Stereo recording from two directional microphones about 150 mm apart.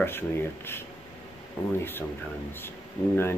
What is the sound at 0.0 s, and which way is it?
Speech, 15° left (ahead or behind).